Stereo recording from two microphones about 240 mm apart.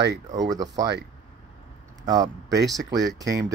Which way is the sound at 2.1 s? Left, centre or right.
Centre.